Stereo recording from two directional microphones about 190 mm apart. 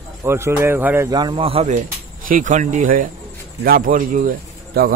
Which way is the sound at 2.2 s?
45° right (ahead or behind).